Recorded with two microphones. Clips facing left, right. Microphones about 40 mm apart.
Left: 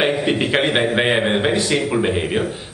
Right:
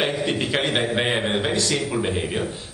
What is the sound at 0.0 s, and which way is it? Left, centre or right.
A man's voice, left.